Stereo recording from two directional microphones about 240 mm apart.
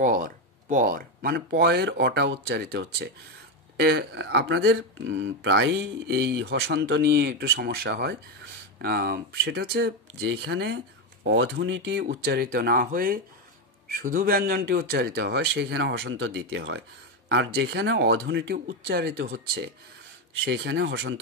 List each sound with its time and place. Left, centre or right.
0.0 s speech: right
6.4 s speech: right
6.8 s speech: right